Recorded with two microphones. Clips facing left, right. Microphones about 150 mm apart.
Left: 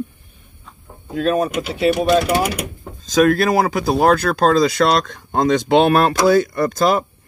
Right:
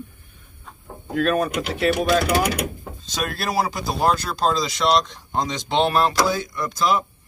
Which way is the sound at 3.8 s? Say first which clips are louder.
Left 7 dB; 60° left (ahead or behind).